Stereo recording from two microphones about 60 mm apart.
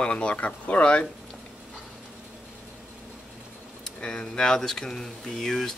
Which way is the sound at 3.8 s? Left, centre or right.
Centre.